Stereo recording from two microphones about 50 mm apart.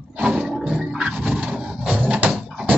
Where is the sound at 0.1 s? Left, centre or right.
Centre.